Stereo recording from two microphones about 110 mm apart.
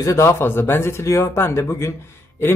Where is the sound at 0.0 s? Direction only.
25° left (ahead or behind).